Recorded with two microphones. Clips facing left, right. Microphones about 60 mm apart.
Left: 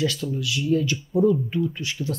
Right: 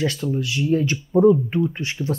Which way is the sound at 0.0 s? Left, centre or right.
Right.